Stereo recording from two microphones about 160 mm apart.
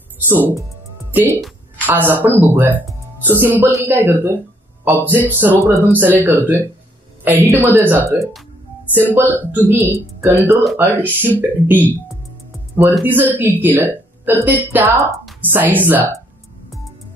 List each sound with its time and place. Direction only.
0.3 s a woman's voice: 10° right (ahead or behind)
1.9 s a woman's voice: 10° right (ahead or behind)
9.2 s speech: 10° left (ahead or behind)
9.5 s a woman's voice: 10° right (ahead or behind)
13.0 s a woman's voice: 10° right (ahead or behind)